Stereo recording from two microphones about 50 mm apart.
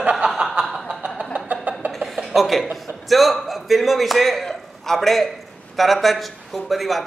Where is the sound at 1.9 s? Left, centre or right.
Centre.